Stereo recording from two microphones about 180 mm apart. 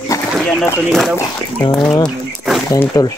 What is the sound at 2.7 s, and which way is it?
Speech, 20° left (ahead or behind).